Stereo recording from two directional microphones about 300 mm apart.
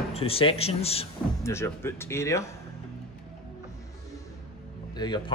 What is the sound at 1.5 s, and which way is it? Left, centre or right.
Speech, centre.